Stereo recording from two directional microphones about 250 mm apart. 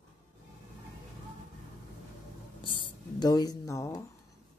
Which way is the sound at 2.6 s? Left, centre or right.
Centre.